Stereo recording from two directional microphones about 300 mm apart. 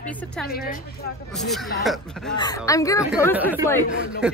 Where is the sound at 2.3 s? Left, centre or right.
Centre.